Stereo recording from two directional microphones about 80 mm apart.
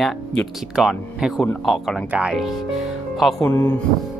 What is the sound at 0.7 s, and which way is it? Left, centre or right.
Speech, centre.